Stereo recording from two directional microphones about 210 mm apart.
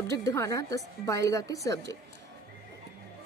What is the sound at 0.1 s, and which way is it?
A woman's voice, 15° left (ahead or behind).